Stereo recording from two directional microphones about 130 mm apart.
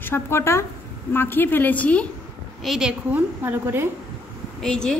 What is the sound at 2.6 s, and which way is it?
Speech, centre (ahead or behind).